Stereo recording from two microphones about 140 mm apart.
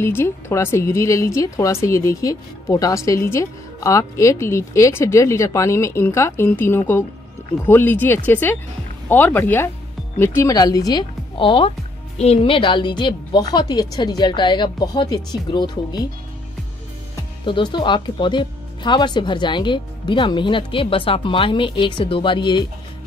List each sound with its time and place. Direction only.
0.0 s a woman's voice: 20° left (ahead or behind)
17.5 s speech: 35° left (ahead or behind)